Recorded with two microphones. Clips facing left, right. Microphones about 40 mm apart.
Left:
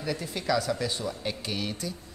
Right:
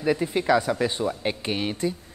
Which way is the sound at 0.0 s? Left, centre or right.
Right.